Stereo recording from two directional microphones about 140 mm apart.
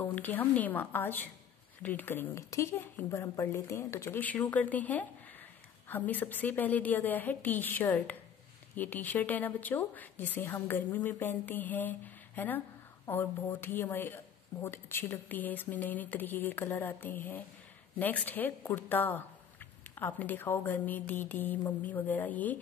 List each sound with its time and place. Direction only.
0.0 s a woman's voice: 15° left (ahead or behind)